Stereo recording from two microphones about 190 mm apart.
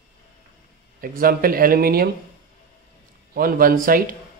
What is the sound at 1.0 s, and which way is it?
Speech, 50° right (ahead or behind).